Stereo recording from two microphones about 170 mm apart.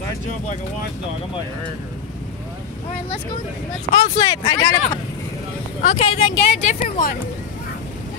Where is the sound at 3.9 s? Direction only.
25° left (ahead or behind).